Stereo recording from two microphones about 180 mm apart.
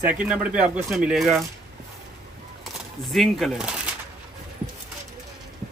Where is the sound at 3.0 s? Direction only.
Centre (ahead or behind).